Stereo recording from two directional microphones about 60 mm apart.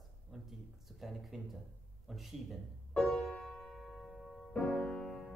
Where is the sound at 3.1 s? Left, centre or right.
Centre.